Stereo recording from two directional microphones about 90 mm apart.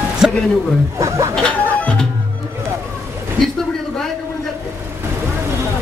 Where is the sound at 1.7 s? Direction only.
15° left (ahead or behind).